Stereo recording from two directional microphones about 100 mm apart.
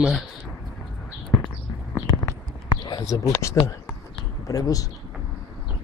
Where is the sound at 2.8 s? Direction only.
40° left (ahead or behind).